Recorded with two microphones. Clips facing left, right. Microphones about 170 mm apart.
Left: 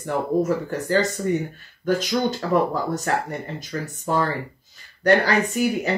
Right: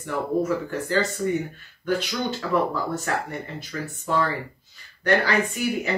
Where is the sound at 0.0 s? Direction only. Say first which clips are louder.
Left 3 dB; 40° left (ahead or behind).